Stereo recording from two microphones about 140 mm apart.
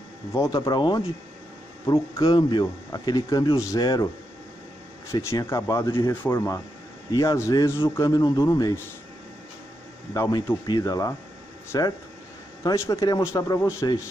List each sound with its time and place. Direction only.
0.3 s speech: 25° left (ahead or behind)
5.1 s speech: 20° left (ahead or behind)
10.1 s speech: 25° left (ahead or behind)